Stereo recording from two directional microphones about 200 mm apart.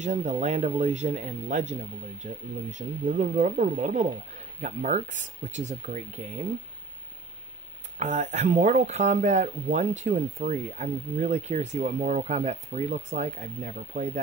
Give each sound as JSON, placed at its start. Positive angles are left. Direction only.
{"t": 0.0, "sound": "speech", "side_deg": -35}
{"t": 8.0, "sound": "speech", "side_deg": -40}